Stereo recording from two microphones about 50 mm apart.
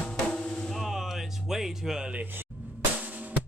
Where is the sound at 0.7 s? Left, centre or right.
Centre.